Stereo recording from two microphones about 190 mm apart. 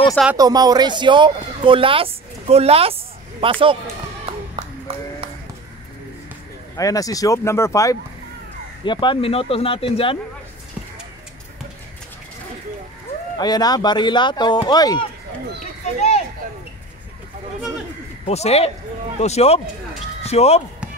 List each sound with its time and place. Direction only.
0.1 s speech: centre (ahead or behind)
0.4 s speech: 20° right (ahead or behind)
4.3 s clapping: 30° right (ahead or behind)
6.8 s speech: 20° left (ahead or behind)
13.4 s speech: 20° left (ahead or behind)
18.2 s speech: 35° left (ahead or behind)